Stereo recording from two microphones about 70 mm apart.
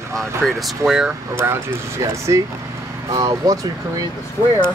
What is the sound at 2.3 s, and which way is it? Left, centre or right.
Speech, right.